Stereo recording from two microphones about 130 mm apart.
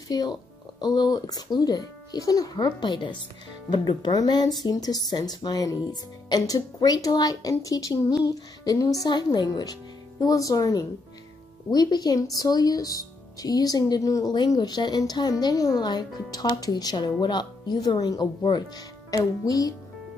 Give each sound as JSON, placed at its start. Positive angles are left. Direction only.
{"t": 0.1, "sound": "speech", "side_deg": 30}